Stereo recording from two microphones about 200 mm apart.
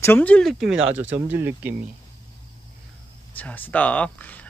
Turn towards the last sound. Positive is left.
turn(degrees=5)  # may be behind; listen again after turning